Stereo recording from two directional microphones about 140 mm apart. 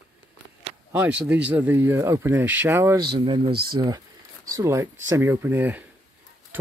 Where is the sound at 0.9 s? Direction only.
10° right (ahead or behind).